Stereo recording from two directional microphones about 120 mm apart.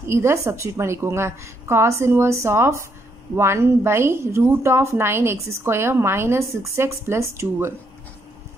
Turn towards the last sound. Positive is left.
turn(degrees=-20)  # may be behind; listen again after turning